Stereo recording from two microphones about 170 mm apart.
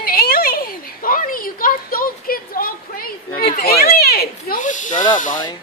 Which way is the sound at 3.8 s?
65° left (ahead or behind).